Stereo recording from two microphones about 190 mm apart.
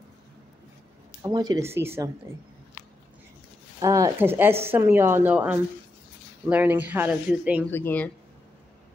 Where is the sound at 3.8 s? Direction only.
15° right (ahead or behind).